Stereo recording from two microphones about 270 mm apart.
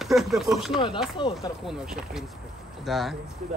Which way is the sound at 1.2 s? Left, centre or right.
Centre.